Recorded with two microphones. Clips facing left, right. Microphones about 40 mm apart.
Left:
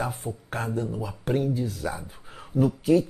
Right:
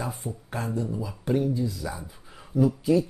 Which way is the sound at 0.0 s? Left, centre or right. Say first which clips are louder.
Left 3 dB; left.